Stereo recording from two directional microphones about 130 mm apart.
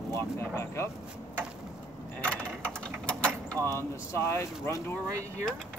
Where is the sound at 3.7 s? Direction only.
20° left (ahead or behind).